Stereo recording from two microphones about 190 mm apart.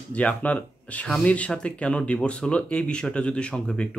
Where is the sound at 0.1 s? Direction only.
10° left (ahead or behind).